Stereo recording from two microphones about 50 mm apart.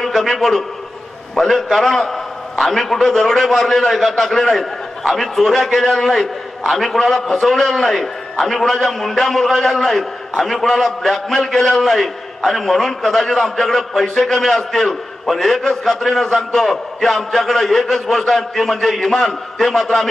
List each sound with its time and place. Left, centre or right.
0.0 s a man's voice: centre